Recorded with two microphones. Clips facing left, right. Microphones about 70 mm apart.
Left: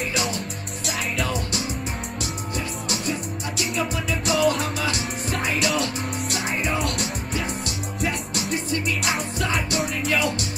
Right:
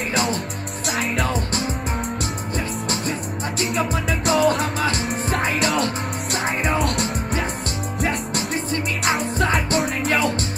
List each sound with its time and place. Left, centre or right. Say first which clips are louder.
0.1 s music: right 4 dB; right
2.9 s music: right 2 dB; right